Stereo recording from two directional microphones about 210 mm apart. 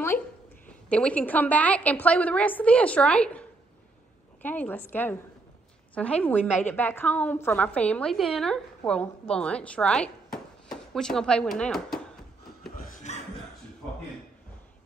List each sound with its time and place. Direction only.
0.7 s a woman's voice: 5° left (ahead or behind)
12.8 s chuckle: 35° left (ahead or behind)